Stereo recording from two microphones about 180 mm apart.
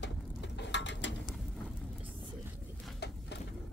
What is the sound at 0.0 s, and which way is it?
Mechanisms, 80° left.